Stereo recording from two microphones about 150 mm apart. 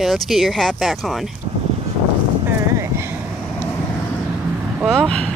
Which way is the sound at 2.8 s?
15° right (ahead or behind).